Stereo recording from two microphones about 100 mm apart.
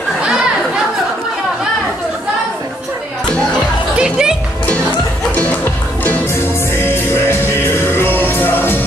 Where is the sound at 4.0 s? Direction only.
5° right (ahead or behind).